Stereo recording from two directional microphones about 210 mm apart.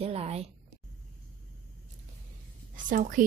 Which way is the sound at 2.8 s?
40° right (ahead or behind).